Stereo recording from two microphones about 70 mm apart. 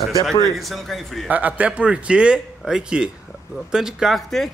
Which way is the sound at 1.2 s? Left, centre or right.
Right.